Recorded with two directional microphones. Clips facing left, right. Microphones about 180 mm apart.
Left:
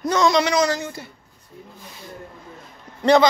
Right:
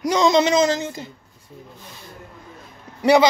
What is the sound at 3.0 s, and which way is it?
Speech, 10° right (ahead or behind).